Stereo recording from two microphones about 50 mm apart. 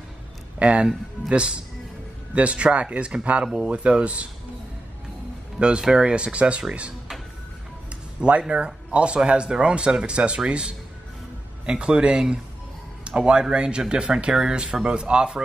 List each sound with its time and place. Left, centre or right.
0.6 s speech: right
5.6 s speech: centre
8.2 s speech: right